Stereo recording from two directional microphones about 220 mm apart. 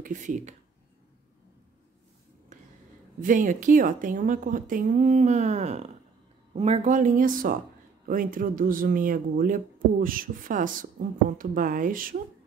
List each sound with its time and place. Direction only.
0.0 s speech: 35° right (ahead or behind)
2.5 s a sound: 35° right (ahead or behind)
3.2 s speech: 35° right (ahead or behind)